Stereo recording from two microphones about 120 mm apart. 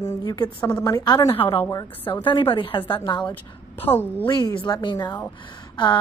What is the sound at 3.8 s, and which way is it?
Speech, 15° left (ahead or behind).